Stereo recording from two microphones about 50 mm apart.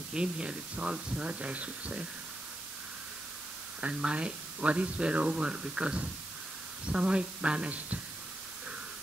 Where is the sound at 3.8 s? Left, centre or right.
Right.